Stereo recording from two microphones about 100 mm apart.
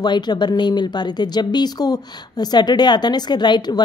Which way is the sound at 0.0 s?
45° left (ahead or behind).